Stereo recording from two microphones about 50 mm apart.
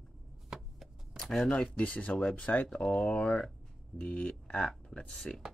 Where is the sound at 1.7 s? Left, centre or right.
Left.